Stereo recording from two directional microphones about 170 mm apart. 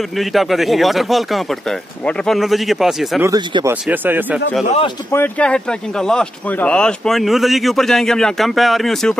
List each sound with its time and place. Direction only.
0.2 s speech: centre (ahead or behind)
3.2 s speech: 20° right (ahead or behind)
3.8 s speech: 10° right (ahead or behind)
5.1 s speech: 10° left (ahead or behind)